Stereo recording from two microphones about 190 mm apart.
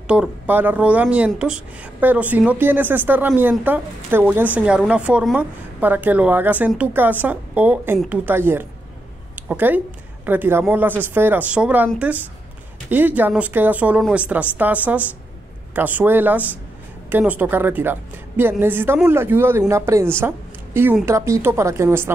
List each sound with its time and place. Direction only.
0.1 s a woman's voice: 10° right (ahead or behind)
9.3 s a sound: 10° right (ahead or behind)
10.2 s a woman's voice: 10° right (ahead or behind)